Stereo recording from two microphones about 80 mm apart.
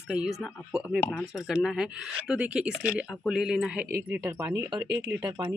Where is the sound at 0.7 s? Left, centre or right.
Right.